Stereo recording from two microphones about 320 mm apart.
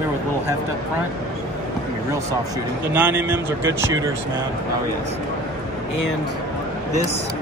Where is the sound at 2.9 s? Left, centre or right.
Centre.